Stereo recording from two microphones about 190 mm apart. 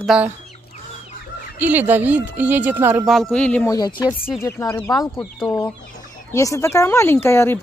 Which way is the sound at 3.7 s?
20° left (ahead or behind).